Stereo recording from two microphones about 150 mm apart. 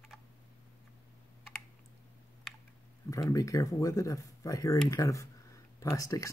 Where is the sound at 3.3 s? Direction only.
20° left (ahead or behind).